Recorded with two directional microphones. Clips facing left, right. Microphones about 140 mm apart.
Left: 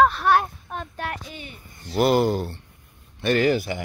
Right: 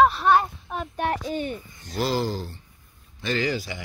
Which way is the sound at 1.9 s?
60° left (ahead or behind).